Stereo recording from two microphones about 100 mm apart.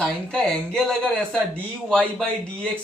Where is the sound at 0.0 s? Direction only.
5° left (ahead or behind).